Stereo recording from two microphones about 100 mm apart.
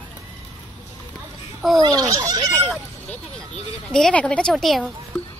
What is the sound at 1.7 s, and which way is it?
Speech, 40° right (ahead or behind).